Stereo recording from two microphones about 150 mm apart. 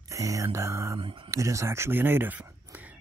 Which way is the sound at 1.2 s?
20° right (ahead or behind).